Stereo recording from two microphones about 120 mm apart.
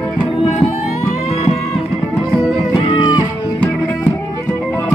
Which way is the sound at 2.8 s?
45° left (ahead or behind).